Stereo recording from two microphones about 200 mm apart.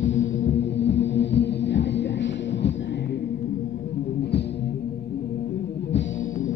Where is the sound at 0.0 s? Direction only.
70° left (ahead or behind).